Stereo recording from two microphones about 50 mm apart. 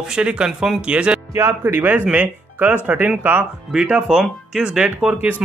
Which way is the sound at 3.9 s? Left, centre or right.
Centre.